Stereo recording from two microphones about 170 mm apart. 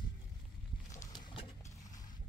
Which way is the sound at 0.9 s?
20° left (ahead or behind).